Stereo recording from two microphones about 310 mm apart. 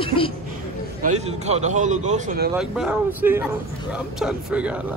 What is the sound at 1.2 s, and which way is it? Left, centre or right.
A man's voice, right.